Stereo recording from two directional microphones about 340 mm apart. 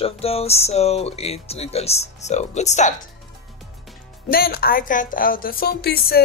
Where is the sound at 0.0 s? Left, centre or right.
Centre.